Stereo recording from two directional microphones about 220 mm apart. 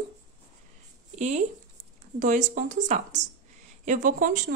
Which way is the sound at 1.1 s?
30° right (ahead or behind).